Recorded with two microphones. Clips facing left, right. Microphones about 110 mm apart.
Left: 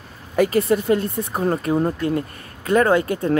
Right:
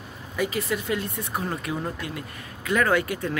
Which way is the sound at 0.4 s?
55° left (ahead or behind).